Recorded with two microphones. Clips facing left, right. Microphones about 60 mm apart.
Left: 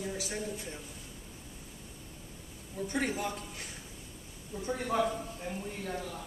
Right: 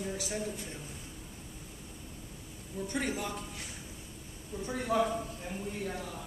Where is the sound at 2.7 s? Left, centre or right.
Centre.